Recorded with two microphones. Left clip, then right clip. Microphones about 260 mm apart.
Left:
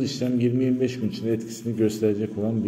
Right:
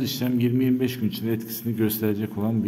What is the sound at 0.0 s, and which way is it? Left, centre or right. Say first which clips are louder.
A man's voice: left 1 dB; centre.